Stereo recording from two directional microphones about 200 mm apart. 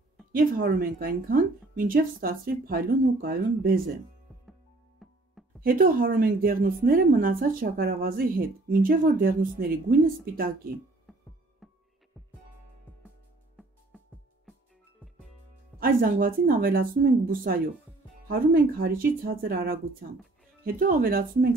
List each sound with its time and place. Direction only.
0.3 s speech: 45° right (ahead or behind)
5.0 s music: centre (ahead or behind)
5.6 s speech: 45° right (ahead or behind)
11.1 s music: centre (ahead or behind)
15.8 s speech: 45° right (ahead or behind)